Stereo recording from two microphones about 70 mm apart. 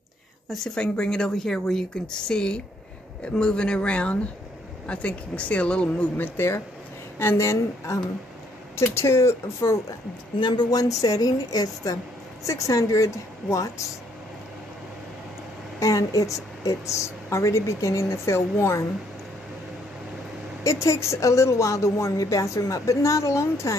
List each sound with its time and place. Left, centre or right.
0.5 s a woman's voice: centre; by 9.8 s left
10.5 s a woman's voice: left
15.8 s speech: left
20.6 s speech: left